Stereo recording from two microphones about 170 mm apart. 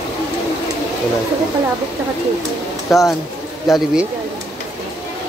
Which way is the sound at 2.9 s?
Centre (ahead or behind).